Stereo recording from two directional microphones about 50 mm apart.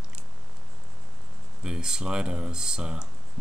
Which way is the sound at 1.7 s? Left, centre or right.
Centre.